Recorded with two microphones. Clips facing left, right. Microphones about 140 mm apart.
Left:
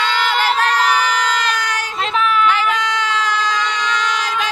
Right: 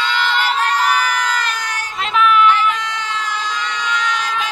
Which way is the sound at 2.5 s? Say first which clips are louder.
Even; 90° left.